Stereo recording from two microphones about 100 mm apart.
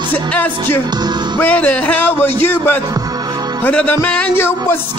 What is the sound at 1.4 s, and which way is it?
Speech, 15° left (ahead or behind).